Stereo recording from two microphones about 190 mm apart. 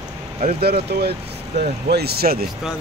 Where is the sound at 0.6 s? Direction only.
55° right (ahead or behind).